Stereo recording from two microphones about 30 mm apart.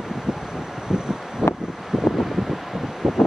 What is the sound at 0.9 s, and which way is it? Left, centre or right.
Wind noise, centre.